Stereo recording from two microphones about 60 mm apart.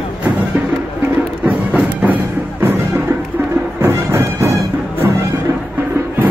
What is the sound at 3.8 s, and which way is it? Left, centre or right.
Music, right.